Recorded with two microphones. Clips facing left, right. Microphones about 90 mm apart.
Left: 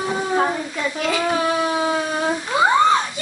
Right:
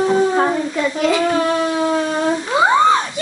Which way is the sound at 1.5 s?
5° left (ahead or behind).